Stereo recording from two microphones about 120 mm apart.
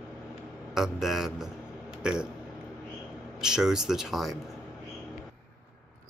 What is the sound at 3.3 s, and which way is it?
Speech, 5° right (ahead or behind).